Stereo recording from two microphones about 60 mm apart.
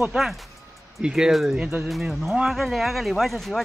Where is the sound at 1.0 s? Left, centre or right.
Centre.